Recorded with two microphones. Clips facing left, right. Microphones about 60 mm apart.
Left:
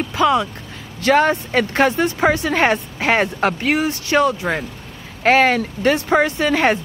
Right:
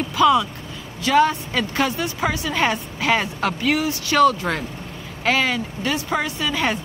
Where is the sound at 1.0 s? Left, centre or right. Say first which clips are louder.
Left 2 dB; left; by 4.6 s centre.